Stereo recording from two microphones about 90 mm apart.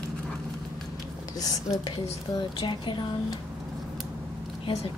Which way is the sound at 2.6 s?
60° left (ahead or behind).